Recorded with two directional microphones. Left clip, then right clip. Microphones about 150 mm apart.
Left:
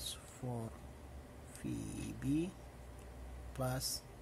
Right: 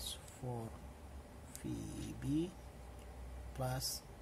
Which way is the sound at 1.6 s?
25° left (ahead or behind).